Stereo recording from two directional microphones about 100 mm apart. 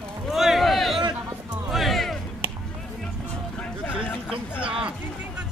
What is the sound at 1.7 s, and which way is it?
Music, centre (ahead or behind).